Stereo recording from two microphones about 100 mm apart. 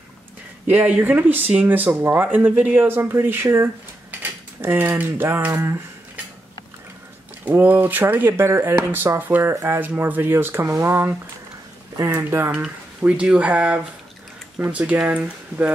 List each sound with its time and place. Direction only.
0.7 s speech: 15° right (ahead or behind)
7.4 s speech: 15° right (ahead or behind)